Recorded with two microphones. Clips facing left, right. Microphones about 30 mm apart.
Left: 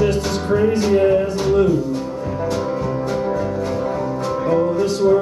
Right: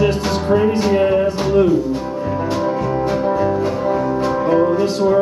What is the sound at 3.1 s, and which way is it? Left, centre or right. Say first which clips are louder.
Music: right 6 dB; centre.